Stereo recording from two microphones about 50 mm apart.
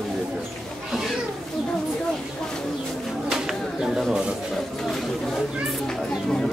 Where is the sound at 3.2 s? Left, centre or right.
Centre.